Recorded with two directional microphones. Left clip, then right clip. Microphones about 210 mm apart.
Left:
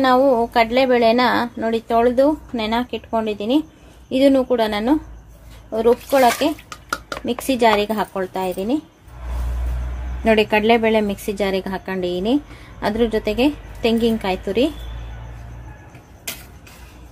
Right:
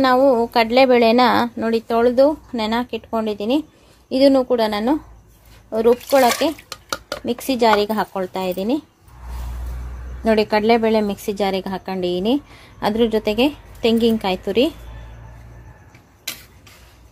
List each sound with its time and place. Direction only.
0.0 s a woman's voice: 40° right (ahead or behind)
10.2 s a woman's voice: 15° right (ahead or behind); by 14.7 s 35° right (ahead or behind)